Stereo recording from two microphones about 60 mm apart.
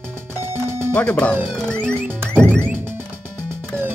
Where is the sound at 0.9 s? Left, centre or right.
Left.